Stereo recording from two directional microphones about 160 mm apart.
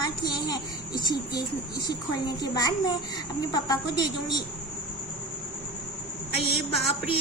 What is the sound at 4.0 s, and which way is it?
Speech, 25° left (ahead or behind).